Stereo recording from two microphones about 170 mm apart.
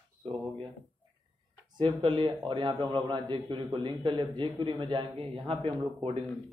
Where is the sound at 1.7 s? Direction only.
30° right (ahead or behind).